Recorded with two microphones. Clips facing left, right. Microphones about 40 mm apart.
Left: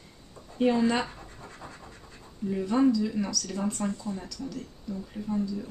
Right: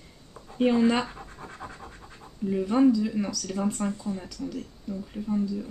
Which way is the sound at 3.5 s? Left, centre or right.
Centre.